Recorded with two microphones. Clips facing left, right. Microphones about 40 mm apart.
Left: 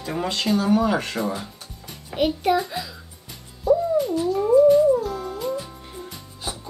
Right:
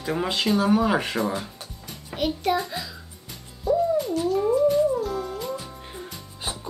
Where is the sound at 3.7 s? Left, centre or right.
Centre.